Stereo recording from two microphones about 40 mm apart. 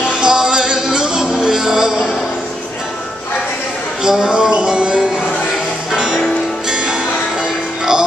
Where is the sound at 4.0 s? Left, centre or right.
Centre.